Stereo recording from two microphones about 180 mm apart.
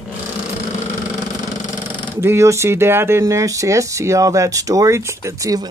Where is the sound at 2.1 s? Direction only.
15° right (ahead or behind).